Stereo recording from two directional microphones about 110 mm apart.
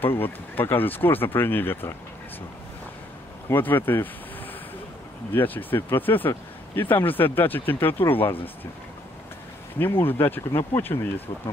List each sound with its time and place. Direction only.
0.0 s speech: 20° left (ahead or behind)
3.4 s speech: 20° left (ahead or behind)
5.3 s speech: 15° left (ahead or behind)
10.0 s speech: 20° left (ahead or behind)